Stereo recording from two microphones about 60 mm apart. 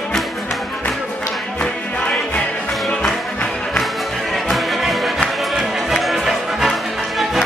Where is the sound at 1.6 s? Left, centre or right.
Centre.